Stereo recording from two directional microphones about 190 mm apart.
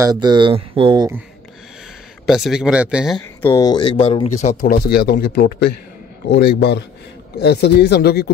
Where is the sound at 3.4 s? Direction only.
15° left (ahead or behind); by 8.3 s 55° left (ahead or behind).